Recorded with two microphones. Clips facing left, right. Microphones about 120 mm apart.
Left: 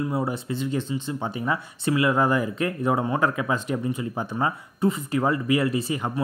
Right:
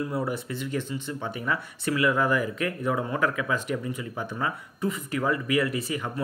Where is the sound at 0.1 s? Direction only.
25° left (ahead or behind).